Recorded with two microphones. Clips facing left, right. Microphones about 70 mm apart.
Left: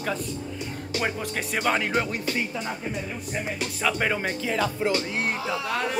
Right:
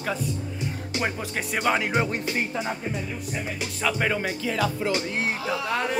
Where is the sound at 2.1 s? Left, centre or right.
Right.